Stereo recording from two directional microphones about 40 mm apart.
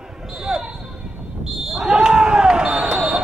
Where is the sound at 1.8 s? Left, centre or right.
Centre.